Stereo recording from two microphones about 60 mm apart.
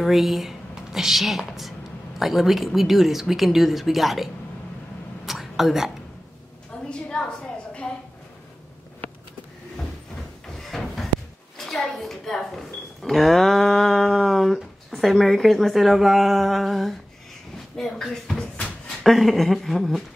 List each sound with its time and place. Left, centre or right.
0.0 s a woman's voice: centre
5.2 s a sound: centre
6.9 s a sound: centre
10.6 s drawer open or close: centre
11.5 s speech: centre
19.0 s a woman's voice: centre